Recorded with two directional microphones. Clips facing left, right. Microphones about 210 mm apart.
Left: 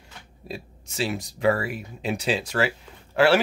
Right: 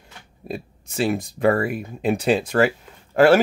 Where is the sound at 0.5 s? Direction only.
55° right (ahead or behind).